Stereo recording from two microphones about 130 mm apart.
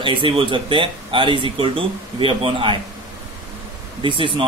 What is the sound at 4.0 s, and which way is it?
Speech, 40° right (ahead or behind).